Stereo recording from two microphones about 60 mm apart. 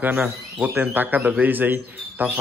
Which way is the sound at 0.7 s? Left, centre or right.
Right.